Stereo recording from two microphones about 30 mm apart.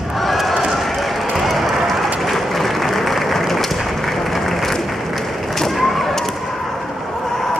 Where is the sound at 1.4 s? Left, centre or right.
Centre.